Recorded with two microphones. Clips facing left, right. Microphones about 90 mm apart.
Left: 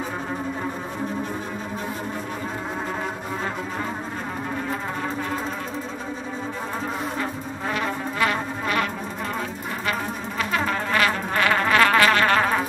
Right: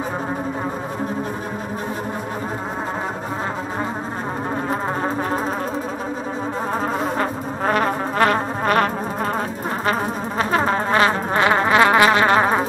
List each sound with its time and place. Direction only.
6.7 s brass instrument: 50° right (ahead or behind); by 12.6 s 25° right (ahead or behind)